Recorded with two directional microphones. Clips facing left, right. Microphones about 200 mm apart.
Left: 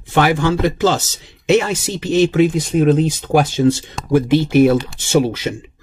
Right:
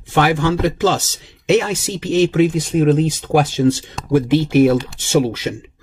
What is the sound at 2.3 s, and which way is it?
Speech, 5° left (ahead or behind).